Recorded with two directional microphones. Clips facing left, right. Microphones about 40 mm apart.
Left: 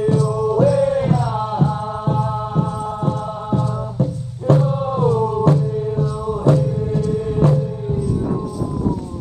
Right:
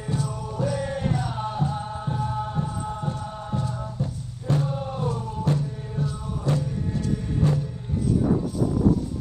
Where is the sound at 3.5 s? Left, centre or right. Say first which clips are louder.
Left 9 dB; left.